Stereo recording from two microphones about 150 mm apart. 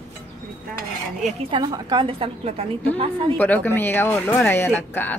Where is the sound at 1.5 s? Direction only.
30° right (ahead or behind).